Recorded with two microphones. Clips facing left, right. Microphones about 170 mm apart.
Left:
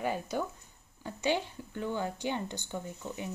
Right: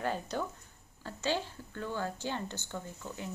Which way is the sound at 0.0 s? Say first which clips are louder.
Left 2 dB; 10° left (ahead or behind).